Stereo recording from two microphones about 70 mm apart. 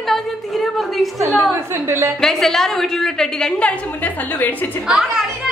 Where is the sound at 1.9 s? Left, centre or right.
Right.